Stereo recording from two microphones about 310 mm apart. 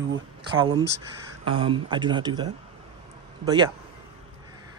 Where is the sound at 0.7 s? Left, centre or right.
Right.